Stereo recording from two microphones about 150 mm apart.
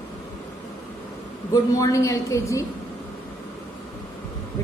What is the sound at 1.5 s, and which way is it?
A woman's voice, 20° left (ahead or behind).